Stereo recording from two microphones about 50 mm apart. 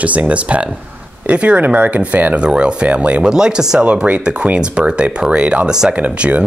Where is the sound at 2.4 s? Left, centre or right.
Right.